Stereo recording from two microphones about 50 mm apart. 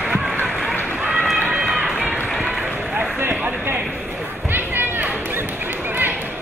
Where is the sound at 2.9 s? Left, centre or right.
Right.